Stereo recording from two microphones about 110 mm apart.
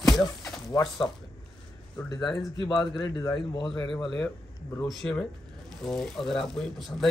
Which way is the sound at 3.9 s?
5° left (ahead or behind).